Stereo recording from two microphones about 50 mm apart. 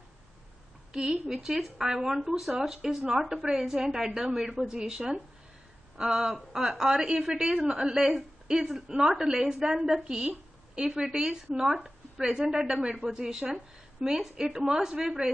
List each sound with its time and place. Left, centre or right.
1.1 s a woman's voice: centre
10.0 s a sound: centre
10.9 s a woman's voice: centre